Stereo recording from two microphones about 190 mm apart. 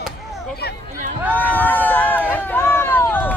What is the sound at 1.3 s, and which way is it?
Run, 10° left (ahead or behind).